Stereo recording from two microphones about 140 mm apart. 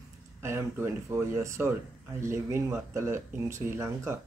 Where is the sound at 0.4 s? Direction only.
20° right (ahead or behind).